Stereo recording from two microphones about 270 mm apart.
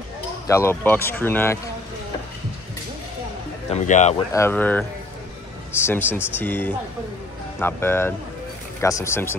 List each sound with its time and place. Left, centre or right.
0.5 s speech: centre
3.7 s speech: left
4.3 s speech: centre
5.9 s speech: centre